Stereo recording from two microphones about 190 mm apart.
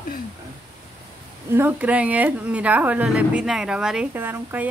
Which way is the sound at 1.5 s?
10° right (ahead or behind).